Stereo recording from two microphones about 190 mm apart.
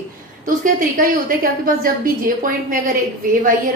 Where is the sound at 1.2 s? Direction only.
50° right (ahead or behind).